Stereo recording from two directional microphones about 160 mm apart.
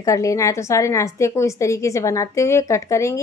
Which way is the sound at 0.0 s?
20° left (ahead or behind).